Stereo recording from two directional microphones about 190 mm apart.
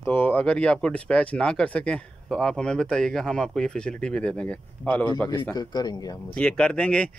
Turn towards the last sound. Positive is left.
turn(degrees=5)  # may be behind; listen again after turning